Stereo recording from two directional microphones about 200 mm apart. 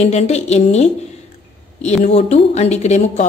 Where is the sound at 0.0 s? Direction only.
35° left (ahead or behind).